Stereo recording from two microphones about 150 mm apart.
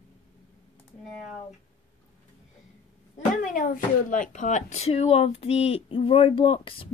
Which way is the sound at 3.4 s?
65° left (ahead or behind).